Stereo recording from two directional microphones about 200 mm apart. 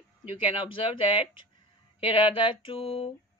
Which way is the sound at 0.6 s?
25° left (ahead or behind).